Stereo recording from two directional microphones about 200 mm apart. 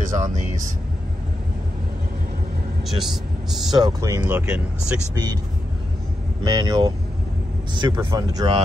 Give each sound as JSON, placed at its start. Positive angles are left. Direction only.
{"t": 0.0, "sound": "speech", "side_deg": -35}
{"t": 2.8, "sound": "speech", "side_deg": 0}
{"t": 3.7, "sound": "speech", "side_deg": -20}
{"t": 5.1, "sound": "speech", "side_deg": -20}
{"t": 6.4, "sound": "speech", "side_deg": -20}